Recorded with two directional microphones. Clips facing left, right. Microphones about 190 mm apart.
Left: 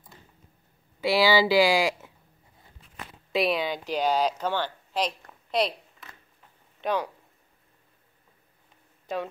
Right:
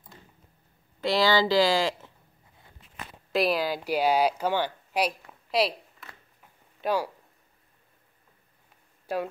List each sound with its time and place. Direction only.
1.0 s speech: 10° left (ahead or behind)
3.3 s a sound: centre (ahead or behind)
9.0 s speech: 10° right (ahead or behind)